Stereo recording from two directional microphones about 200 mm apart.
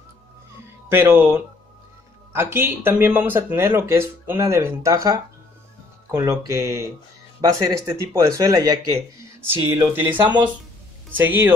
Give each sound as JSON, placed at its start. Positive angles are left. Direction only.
{"t": 0.8, "sound": "speech", "side_deg": -10}
{"t": 10.0, "sound": "speech", "side_deg": -25}
{"t": 11.1, "sound": "speech", "side_deg": -10}